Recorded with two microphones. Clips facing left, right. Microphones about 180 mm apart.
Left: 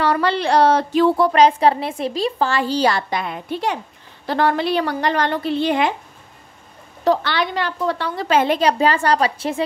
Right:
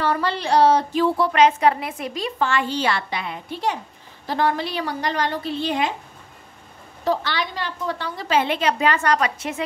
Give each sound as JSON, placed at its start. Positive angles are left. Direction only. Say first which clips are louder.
{"t": 0.0, "sound": "a sound", "louder": "left 4 dB", "side_deg": 75}
{"t": 1.1, "sound": "a woman's voice", "louder": "left 3 dB", "side_deg": 40}
{"t": 4.3, "sound": "a woman's voice", "louder": "left 4 dB", "side_deg": 70}
{"t": 7.1, "sound": "a woman's voice", "louder": "left 5 dB", "side_deg": 65}